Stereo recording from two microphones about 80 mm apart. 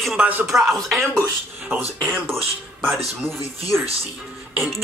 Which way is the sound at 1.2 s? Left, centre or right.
Right.